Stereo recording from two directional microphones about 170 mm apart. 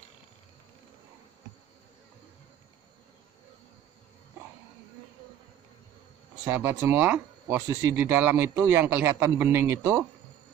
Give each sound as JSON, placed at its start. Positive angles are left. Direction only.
{"t": 6.4, "sound": "a man's voice", "side_deg": -15}